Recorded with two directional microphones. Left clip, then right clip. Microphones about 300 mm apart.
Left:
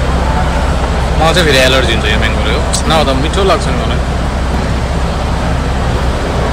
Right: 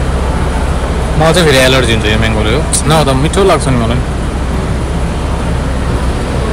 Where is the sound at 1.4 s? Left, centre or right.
Right.